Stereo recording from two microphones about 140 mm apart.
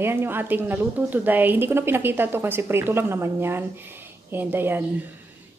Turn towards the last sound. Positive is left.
turn(degrees=-15)  # may be behind; listen again after turning